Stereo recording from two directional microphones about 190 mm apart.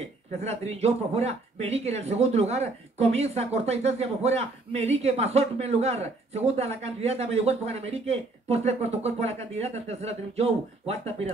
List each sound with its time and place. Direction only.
0.4 s speech: 35° right (ahead or behind)